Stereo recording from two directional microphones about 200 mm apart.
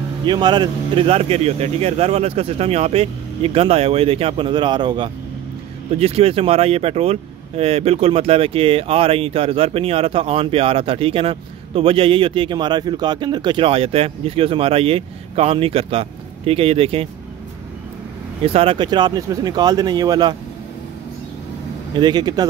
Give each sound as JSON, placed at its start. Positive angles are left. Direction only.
{"t": 0.2, "sound": "speech", "side_deg": -20}
{"t": 18.4, "sound": "speech", "side_deg": -30}
{"t": 21.9, "sound": "speech", "side_deg": -20}